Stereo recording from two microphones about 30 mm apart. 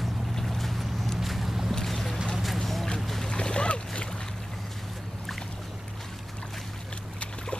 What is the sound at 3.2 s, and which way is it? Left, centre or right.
Boat, left.